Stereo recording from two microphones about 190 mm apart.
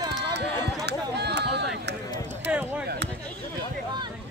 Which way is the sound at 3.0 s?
60° right (ahead or behind).